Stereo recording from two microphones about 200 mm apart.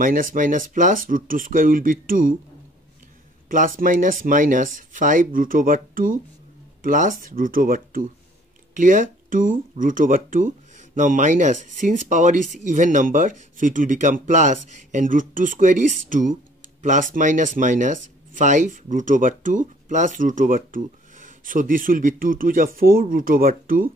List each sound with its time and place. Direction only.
0.0 s speech: 45° right (ahead or behind)
3.4 s speech: 40° right (ahead or behind)